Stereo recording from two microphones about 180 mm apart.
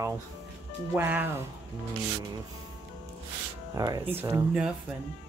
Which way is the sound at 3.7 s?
20° right (ahead or behind).